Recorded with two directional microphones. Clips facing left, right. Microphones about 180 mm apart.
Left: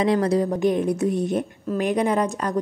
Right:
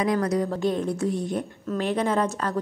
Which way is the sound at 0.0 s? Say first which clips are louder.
Left 4 dB; 30° left (ahead or behind).